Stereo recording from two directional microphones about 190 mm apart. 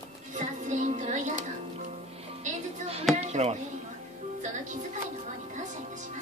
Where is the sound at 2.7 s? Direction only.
35° right (ahead or behind).